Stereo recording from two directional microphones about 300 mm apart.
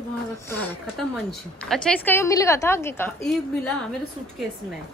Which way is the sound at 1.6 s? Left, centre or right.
Centre.